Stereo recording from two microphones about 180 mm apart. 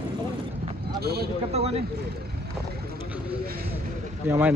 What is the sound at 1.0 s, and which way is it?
Speech, 60° right (ahead or behind).